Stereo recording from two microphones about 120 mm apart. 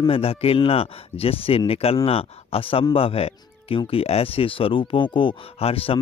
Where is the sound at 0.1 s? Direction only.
55° left (ahead or behind).